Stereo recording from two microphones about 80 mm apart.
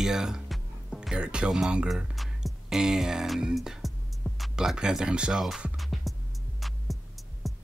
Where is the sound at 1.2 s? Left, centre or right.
Centre.